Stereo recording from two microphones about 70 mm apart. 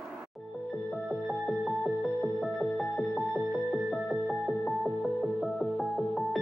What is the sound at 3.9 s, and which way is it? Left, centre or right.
Music, centre.